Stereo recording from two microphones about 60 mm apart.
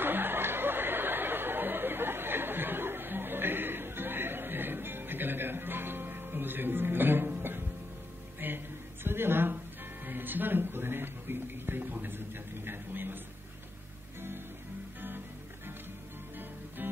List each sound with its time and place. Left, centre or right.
0.0 s chatter: right
8.4 s music: right
9.0 s a sound: right
10.0 s music: right
12.6 s a sound: right
15.0 s music: right
16.3 s music: right